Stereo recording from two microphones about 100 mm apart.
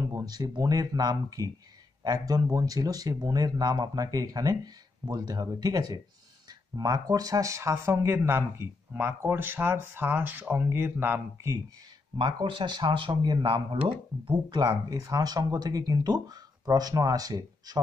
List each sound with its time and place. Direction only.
0.1 s speech: 40° right (ahead or behind); by 11.5 s 20° right (ahead or behind)
12.2 s speech: 50° right (ahead or behind)